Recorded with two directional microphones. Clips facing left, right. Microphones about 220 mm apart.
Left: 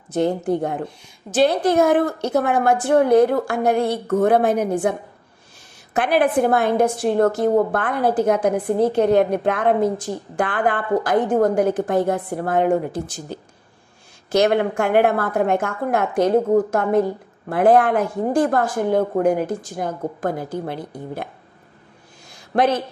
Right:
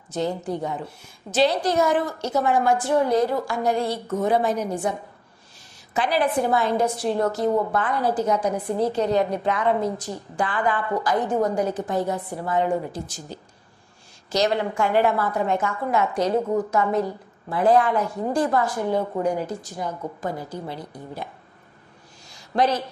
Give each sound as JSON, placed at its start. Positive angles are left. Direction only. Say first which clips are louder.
{"t": 0.1, "sound": "a woman's voice", "louder": "left 6 dB", "side_deg": 55}
{"t": 22.6, "sound": "a woman's voice", "louder": "left 3 dB", "side_deg": 55}